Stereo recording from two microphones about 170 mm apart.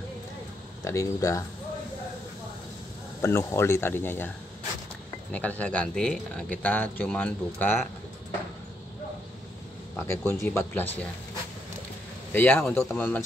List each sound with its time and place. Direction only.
0.8 s speech: 20° left (ahead or behind)
3.2 s speech: 15° left (ahead or behind)
5.3 s speech: 10° left (ahead or behind)
9.9 s speech: 15° left (ahead or behind)
12.3 s speech: 10° left (ahead or behind)